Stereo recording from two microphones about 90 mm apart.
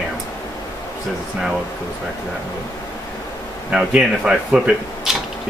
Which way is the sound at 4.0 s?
10° right (ahead or behind).